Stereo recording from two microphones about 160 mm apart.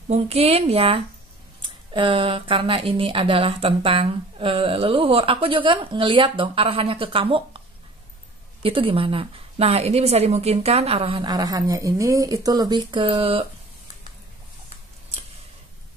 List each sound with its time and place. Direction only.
0.1 s speech: 40° right (ahead or behind)
8.6 s speech: 35° right (ahead or behind)